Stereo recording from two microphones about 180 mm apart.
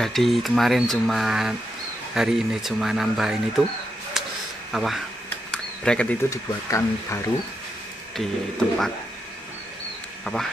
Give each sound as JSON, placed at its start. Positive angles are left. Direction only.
{"t": 0.0, "sound": "speech", "side_deg": 0}
{"t": 4.2, "sound": "a sound", "side_deg": 0}
{"t": 4.7, "sound": "speech", "side_deg": 0}
{"t": 5.5, "sound": "a sound", "side_deg": 5}
{"t": 6.3, "sound": "speech", "side_deg": 15}
{"t": 8.2, "sound": "speech", "side_deg": 0}